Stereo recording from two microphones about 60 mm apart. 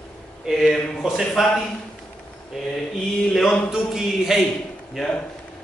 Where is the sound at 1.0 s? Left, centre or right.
Centre.